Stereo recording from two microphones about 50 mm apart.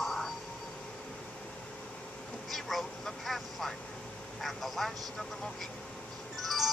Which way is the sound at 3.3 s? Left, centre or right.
Centre.